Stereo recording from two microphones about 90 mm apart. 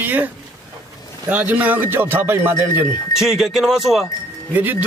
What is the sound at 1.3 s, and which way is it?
A man's voice, 20° right (ahead or behind).